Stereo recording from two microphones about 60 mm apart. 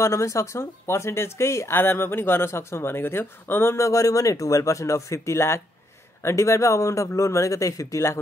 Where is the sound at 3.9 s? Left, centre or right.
Left.